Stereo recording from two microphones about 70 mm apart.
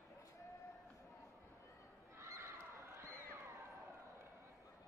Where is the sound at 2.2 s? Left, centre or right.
Right.